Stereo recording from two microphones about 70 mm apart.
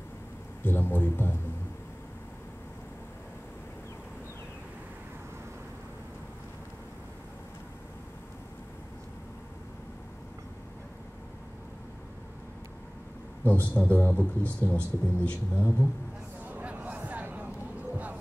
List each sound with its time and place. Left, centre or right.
0.7 s a man's voice: left
13.4 s a man's voice: left
15.5 s a man's voice: left
16.4 s a sound: right